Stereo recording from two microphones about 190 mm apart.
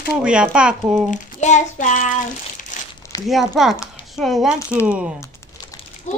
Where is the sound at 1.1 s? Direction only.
40° left (ahead or behind).